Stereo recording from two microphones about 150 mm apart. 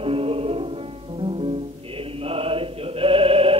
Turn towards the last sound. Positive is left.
turn(degrees=-40)  # may be behind; listen again after turning